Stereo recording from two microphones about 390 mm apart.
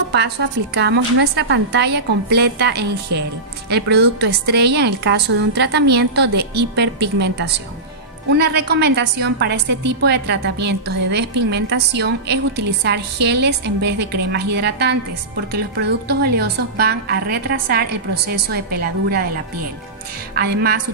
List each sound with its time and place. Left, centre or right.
0.1 s a woman's voice: right
20.3 s a woman's voice: right